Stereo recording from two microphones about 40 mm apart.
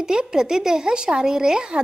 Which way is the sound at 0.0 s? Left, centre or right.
Centre.